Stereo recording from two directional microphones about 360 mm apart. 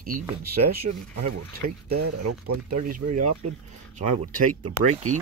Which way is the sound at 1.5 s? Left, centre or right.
Right.